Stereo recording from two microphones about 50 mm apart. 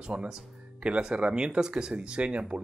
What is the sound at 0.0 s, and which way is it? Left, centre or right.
Speech, centre.